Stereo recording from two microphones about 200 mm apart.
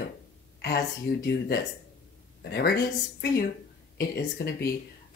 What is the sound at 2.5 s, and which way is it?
Speech, 50° left (ahead or behind).